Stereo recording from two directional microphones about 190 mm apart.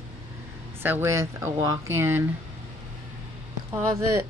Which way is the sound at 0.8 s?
10° right (ahead or behind).